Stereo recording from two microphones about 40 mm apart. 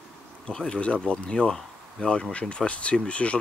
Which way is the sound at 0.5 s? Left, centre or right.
Centre.